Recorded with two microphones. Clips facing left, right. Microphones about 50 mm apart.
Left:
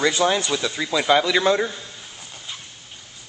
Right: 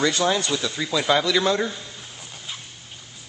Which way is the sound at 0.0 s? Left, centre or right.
Centre.